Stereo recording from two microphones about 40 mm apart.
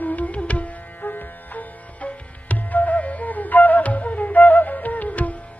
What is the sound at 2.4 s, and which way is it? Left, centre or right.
Flute, left.